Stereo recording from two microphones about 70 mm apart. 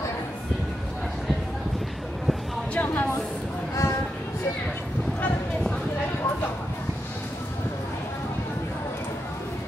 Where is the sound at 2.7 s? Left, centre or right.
Left.